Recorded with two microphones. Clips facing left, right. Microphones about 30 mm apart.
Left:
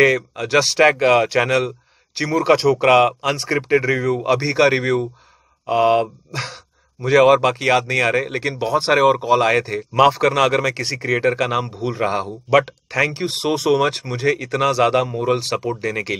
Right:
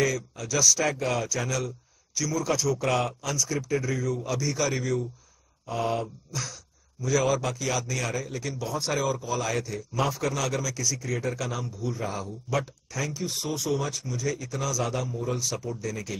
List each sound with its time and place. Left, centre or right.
0.0 s speech: left